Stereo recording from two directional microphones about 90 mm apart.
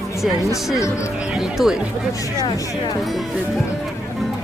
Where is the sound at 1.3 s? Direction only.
5° right (ahead or behind).